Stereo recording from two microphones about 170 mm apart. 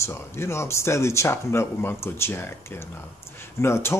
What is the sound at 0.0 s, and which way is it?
Speech, 15° left (ahead or behind).